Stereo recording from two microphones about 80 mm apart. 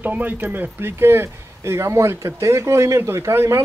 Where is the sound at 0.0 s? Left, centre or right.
Right.